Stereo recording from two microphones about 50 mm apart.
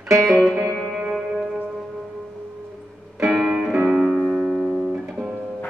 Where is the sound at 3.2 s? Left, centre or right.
Centre.